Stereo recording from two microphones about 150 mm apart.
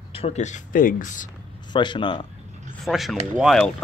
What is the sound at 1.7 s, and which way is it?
Speech, 30° left (ahead or behind).